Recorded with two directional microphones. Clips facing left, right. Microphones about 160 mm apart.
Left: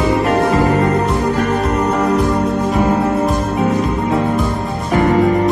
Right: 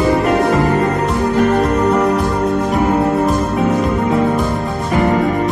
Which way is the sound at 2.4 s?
Centre (ahead or behind).